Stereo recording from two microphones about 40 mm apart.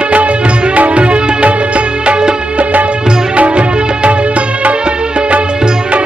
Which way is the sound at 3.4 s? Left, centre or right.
Right.